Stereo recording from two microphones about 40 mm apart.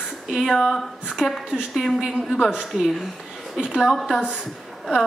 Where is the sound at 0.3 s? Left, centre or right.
Centre.